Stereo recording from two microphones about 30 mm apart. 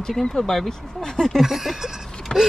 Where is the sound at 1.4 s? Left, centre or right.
Centre.